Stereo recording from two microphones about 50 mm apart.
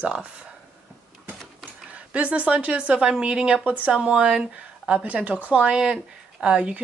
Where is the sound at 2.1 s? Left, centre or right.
Right.